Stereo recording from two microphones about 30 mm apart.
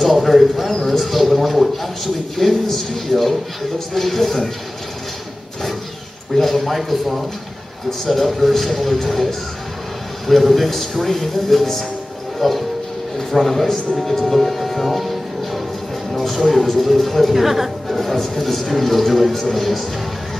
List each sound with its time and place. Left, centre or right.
0.0 s a man's voice: centre
0.7 s a sound: centre
2.3 s speech: centre
6.3 s speech: centre
17.3 s speech: centre